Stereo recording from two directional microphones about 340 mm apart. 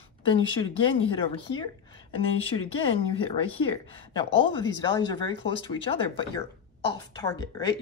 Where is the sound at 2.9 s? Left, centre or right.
Centre.